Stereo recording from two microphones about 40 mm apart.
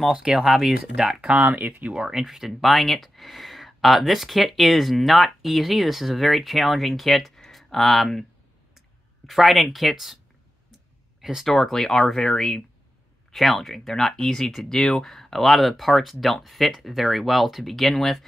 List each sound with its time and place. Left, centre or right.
0.1 s speech: centre
2.2 s speech: centre
11.1 s a sound: centre
11.4 s speech: centre